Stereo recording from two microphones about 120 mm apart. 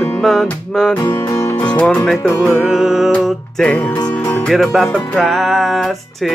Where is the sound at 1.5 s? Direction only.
10° left (ahead or behind).